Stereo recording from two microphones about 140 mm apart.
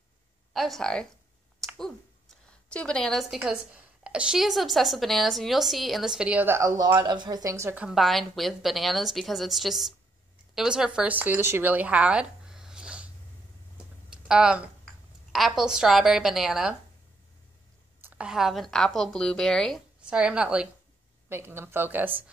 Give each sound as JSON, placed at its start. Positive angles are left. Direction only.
{"t": 0.5, "sound": "speech", "side_deg": 0}
{"t": 2.7, "sound": "a woman's voice", "side_deg": 5}
{"t": 7.8, "sound": "a woman's voice", "side_deg": 0}
{"t": 14.1, "sound": "a woman's voice", "side_deg": -5}
{"t": 18.0, "sound": "a woman's voice", "side_deg": -5}
{"t": 20.1, "sound": "speech", "side_deg": -10}